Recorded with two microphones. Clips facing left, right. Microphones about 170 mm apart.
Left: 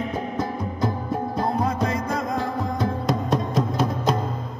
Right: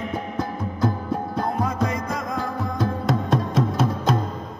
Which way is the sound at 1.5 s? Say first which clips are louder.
Even; 30° left (ahead or behind).